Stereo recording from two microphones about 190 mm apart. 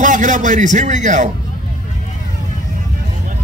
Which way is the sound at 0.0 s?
40° right (ahead or behind).